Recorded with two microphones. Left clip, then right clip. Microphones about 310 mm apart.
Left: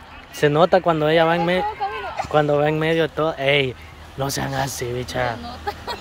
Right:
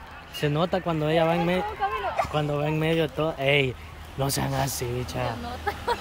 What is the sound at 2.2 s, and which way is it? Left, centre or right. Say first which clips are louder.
Fowl: right 1 dB; centre.